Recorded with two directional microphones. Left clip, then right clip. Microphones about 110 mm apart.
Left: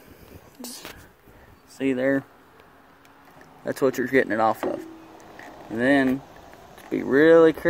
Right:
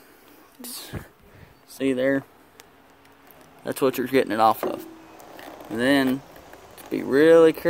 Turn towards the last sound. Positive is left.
turn(degrees=-5)  # may be behind; listen again after turning